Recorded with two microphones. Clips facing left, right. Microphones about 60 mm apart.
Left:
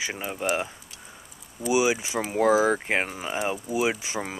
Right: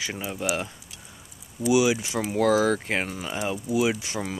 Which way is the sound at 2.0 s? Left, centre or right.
Centre.